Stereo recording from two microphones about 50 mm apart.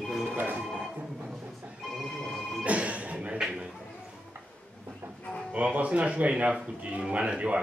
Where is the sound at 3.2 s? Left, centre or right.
Centre.